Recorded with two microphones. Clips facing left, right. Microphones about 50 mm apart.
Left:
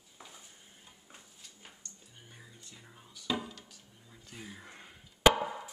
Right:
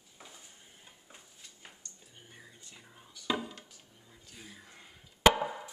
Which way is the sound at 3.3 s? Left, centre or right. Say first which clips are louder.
Left 2 dB; right.